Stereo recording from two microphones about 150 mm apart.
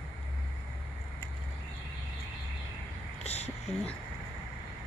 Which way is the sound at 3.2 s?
45° left (ahead or behind).